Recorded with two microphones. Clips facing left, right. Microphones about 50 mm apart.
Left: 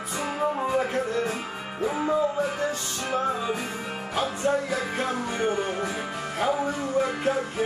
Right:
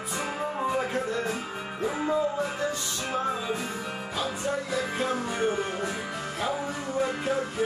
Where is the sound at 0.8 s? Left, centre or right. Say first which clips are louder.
Left 3 dB; left.